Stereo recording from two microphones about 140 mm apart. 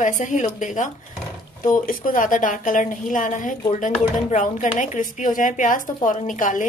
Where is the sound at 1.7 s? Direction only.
75° left (ahead or behind).